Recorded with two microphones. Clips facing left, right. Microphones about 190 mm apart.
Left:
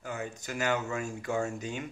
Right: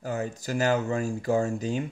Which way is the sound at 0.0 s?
35° right (ahead or behind).